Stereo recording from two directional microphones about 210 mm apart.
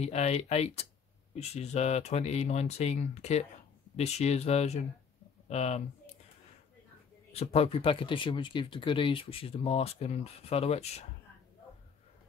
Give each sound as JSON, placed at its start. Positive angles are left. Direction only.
{"t": 0.0, "sound": "speech", "side_deg": 30}
{"t": 7.3, "sound": "speech", "side_deg": 30}